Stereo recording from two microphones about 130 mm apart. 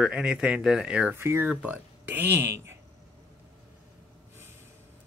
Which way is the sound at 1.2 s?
20° right (ahead or behind).